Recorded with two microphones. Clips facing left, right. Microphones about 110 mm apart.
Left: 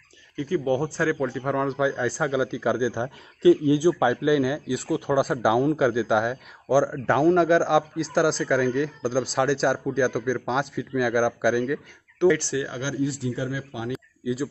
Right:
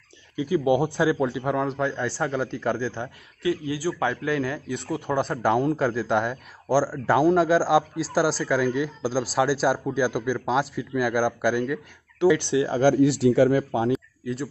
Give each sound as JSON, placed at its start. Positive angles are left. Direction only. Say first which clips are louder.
{"t": 0.4, "sound": "speech", "louder": "right 2 dB", "side_deg": -15}
{"t": 3.4, "sound": "speech", "louder": "left 8 dB", "side_deg": 25}
{"t": 12.4, "sound": "speech", "louder": "right 5 dB", "side_deg": -20}
{"t": 12.8, "sound": "speech", "louder": "right 9 dB", "side_deg": -65}
{"t": 13.9, "sound": "a sound", "louder": "left 1 dB", "side_deg": 5}